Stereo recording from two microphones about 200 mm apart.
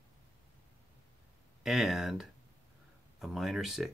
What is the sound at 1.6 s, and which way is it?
Speech, centre (ahead or behind).